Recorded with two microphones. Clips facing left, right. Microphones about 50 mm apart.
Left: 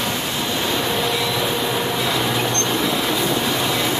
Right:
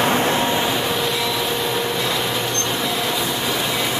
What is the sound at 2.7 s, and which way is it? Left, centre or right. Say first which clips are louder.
Train: left 2 dB; centre.